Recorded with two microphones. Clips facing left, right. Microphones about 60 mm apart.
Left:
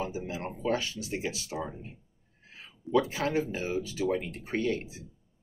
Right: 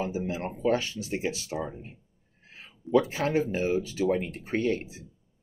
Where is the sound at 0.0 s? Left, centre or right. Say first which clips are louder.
Right 4 dB; right.